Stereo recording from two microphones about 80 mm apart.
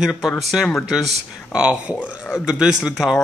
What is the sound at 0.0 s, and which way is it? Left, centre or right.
Speech, centre.